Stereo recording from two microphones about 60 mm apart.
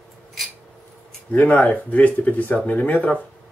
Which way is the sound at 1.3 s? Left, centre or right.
Left.